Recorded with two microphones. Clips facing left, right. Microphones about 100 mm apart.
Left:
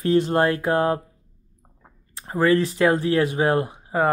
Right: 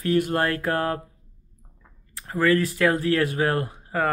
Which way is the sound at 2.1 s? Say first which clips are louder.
Left 2 dB; 25° left (ahead or behind).